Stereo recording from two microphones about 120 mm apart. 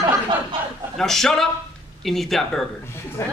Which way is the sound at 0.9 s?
5° left (ahead or behind).